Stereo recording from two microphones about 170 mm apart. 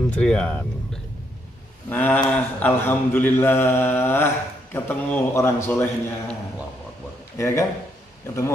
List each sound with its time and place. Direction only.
0.1 s speech: 5° left (ahead or behind)
1.9 s speech: 10° left (ahead or behind)
7.3 s speech: 15° left (ahead or behind)